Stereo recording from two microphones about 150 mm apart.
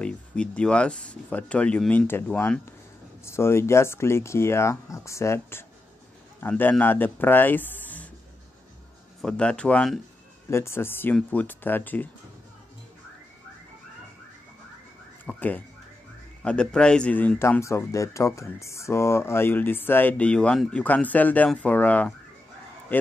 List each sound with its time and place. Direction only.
0.0 s speech: 5° left (ahead or behind)
9.2 s speech: 5° left (ahead or behind)
10.5 s speech: 15° left (ahead or behind)
15.2 s a sound: 10° left (ahead or behind)
16.4 s speech: 5° left (ahead or behind)